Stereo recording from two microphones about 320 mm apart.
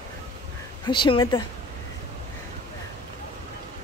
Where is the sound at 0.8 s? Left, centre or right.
Centre.